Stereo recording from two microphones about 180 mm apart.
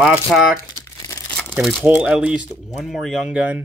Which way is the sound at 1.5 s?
5° right (ahead or behind).